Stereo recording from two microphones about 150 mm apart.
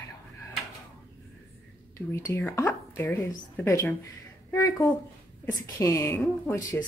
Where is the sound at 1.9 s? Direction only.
20° left (ahead or behind).